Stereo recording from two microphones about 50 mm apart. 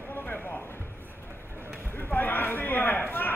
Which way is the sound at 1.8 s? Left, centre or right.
Left.